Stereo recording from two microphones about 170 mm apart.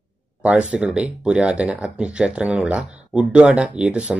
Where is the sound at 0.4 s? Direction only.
5° right (ahead or behind).